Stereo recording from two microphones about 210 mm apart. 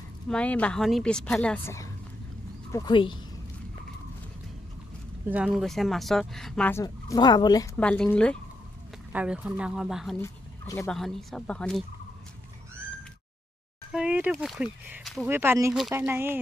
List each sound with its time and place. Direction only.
0.3 s speech: 5° left (ahead or behind)
2.7 s speech: 20° left (ahead or behind)
5.3 s speech: 5° right (ahead or behind); by 7.7 s 20° left (ahead or behind)
7.7 s speech: 5° left (ahead or behind)
9.1 s speech: 5° right (ahead or behind)
10.2 s speech: 10° left (ahead or behind)
11.0 s speech: centre (ahead or behind)
13.9 s speech: 5° right (ahead or behind)